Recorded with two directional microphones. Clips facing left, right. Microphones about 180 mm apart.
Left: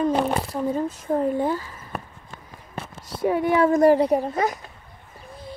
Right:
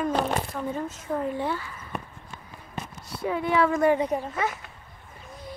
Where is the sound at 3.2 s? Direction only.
40° left (ahead or behind).